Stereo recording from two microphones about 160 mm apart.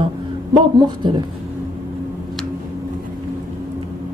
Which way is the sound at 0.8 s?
30° right (ahead or behind).